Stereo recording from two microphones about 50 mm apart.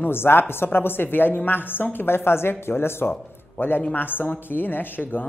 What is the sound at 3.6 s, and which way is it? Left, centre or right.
A woman's voice, left.